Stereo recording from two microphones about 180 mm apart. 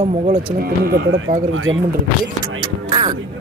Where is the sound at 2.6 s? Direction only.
25° right (ahead or behind).